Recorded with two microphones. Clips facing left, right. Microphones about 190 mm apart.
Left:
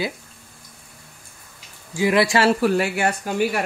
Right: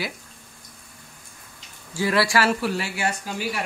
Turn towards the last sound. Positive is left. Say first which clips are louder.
# left 7 dB
turn(degrees=55)  # may be behind; listen again after turning